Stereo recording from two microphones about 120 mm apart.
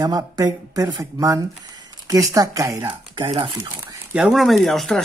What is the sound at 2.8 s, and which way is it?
Speech, 45° right (ahead or behind).